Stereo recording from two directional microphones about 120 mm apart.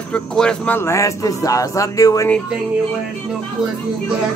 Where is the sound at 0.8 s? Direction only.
25° left (ahead or behind).